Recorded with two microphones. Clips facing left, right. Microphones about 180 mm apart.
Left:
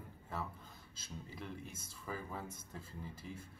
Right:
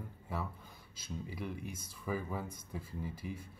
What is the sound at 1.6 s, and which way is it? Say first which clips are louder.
Speech: right 6 dB; 25° left (ahead or behind).